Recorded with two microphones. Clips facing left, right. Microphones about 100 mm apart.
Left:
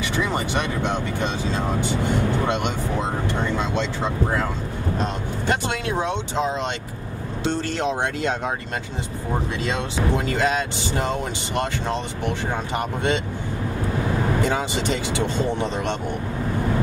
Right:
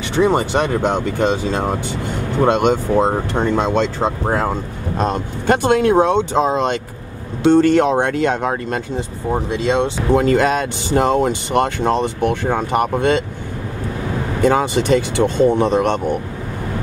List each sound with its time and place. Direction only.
0.1 s speech: 30° right (ahead or behind)
1.2 s speech: 50° right (ahead or behind)
9.3 s speech: 25° right (ahead or behind)
10.1 s speech: 50° right (ahead or behind)
14.4 s speech: 55° right (ahead or behind)